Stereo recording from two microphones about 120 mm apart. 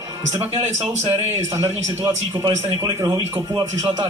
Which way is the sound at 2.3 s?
30° right (ahead or behind).